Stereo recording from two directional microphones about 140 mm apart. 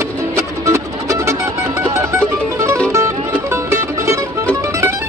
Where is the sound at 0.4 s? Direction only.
20° right (ahead or behind).